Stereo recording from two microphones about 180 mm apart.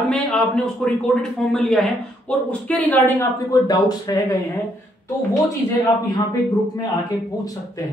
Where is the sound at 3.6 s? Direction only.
20° left (ahead or behind).